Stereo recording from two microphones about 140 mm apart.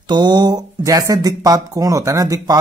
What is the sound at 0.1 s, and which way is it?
Speech, 30° right (ahead or behind).